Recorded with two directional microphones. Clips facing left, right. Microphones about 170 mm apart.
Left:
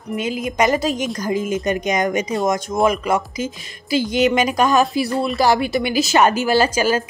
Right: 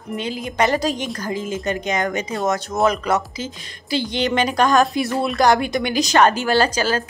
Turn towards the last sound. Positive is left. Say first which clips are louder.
# left 2 dB
turn(degrees=10)  # may be behind; listen again after turning